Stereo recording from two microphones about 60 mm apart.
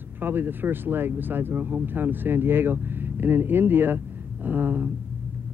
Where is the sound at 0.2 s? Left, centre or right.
Right.